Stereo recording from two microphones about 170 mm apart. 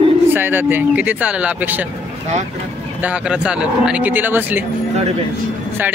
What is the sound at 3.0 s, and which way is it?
Speech, 5° right (ahead or behind).